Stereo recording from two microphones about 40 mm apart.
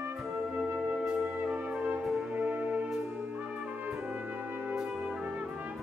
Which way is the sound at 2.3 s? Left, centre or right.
Right.